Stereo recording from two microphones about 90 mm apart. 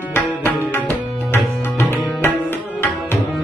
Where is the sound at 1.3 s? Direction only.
25° left (ahead or behind).